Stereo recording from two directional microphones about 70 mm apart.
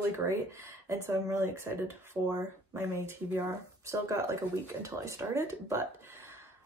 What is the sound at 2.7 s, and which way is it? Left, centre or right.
A woman's voice, right.